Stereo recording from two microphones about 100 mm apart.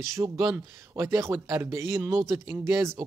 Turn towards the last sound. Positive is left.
turn(degrees=-30)  # may be behind; listen again after turning